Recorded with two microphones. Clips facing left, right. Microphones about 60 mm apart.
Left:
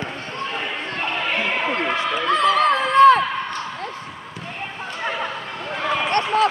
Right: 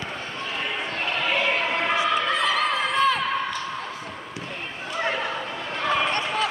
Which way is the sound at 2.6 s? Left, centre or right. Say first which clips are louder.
Left 9 dB; left.